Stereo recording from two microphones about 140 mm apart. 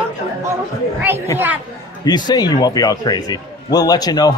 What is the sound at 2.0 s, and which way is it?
A man's voice, 30° left (ahead or behind).